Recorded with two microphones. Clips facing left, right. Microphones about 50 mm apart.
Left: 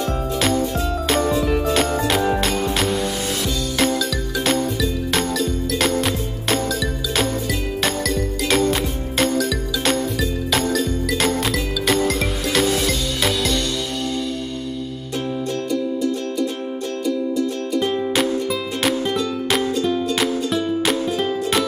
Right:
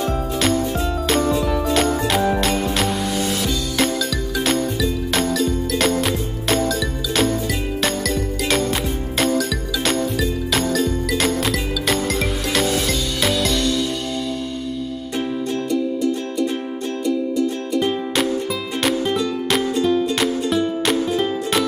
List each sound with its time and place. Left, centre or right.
1.0 s music: centre
4.4 s music: centre
17.7 s music: centre